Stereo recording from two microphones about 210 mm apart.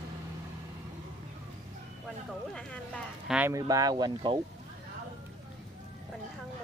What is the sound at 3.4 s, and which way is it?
Speech, 15° right (ahead or behind).